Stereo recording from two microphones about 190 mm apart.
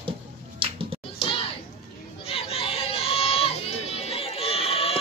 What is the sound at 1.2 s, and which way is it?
Children playing, 30° left (ahead or behind).